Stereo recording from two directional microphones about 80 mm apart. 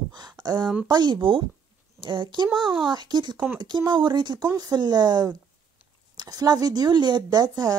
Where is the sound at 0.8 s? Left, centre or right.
Right.